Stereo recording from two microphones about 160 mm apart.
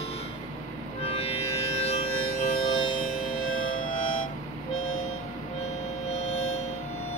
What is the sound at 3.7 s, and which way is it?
Music, 55° left (ahead or behind).